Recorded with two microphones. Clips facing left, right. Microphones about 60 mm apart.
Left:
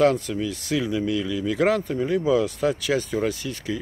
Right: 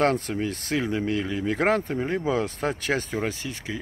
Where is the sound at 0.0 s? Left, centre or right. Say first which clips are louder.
Left 3 dB; right.